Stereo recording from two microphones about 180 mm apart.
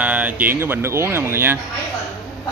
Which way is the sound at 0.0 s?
10° right (ahead or behind).